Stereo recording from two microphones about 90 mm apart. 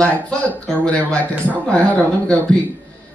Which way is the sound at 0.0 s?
15° left (ahead or behind).